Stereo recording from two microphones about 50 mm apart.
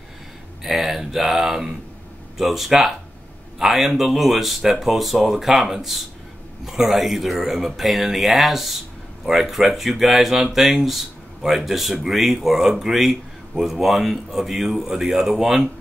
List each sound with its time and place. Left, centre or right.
0.7 s speech: centre